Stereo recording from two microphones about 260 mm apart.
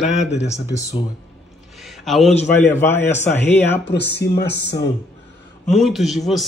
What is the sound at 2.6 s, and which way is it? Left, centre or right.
Speech, centre.